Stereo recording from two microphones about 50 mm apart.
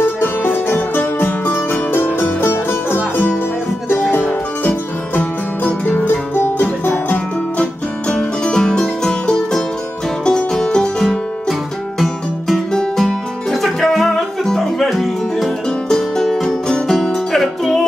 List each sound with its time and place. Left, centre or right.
0.0 s music: left
4.1 s music: left
8.1 s music: centre
12.0 s music: centre